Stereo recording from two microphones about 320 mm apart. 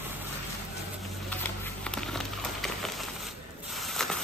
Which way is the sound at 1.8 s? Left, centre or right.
Centre.